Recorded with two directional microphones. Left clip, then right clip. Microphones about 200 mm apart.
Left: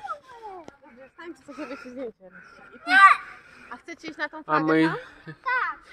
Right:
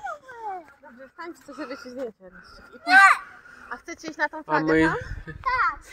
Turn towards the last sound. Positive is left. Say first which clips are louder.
# right 3 dB
turn(degrees=-20)  # may be behind; listen again after turning